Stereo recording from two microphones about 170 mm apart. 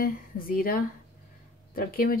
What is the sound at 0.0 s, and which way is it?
A woman's voice, 60° left (ahead or behind).